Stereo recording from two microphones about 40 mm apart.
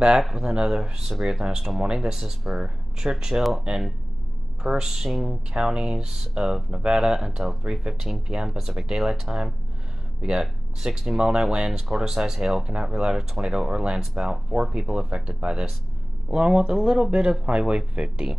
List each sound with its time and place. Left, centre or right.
0.3 s speech: centre
4.6 s speech: centre
5.1 s speech: centre
5.5 s speech: centre
12.6 s speech: right
17.1 s speech: right